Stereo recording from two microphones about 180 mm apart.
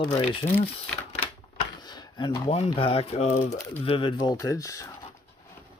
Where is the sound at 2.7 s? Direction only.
30° left (ahead or behind).